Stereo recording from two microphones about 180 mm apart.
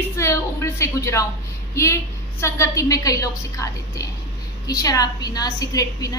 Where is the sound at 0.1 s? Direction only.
15° left (ahead or behind).